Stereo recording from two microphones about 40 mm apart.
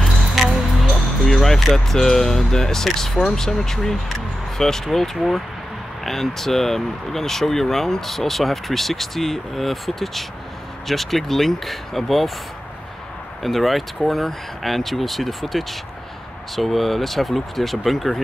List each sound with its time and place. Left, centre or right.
0.0 s music: centre
1.2 s speech: centre
13.4 s speech: centre